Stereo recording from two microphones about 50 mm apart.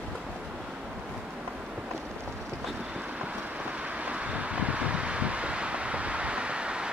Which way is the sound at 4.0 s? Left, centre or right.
Right.